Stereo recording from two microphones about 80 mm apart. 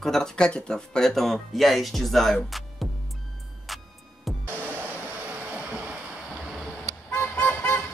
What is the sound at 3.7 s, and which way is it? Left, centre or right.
Music, centre.